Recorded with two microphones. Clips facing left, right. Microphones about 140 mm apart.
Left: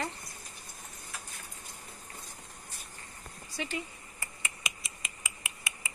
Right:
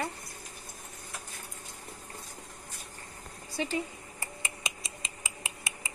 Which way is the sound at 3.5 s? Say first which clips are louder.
Right 5 dB; 30° right (ahead or behind).